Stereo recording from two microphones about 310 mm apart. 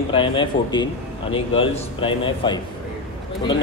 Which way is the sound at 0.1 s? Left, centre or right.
Centre.